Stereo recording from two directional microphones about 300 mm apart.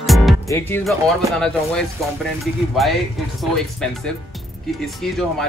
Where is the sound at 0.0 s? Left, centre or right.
Centre.